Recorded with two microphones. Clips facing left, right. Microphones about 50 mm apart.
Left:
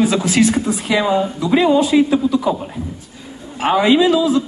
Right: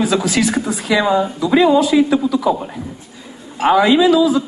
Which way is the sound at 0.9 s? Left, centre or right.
Right.